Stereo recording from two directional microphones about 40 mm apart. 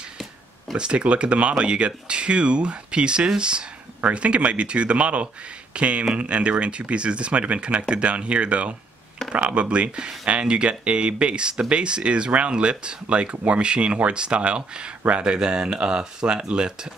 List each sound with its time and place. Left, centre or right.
0.7 s speech: right